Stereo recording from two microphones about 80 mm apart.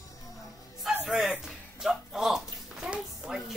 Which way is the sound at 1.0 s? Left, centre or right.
Centre.